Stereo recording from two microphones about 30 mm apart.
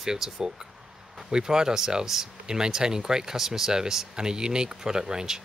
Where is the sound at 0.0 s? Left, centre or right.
Centre.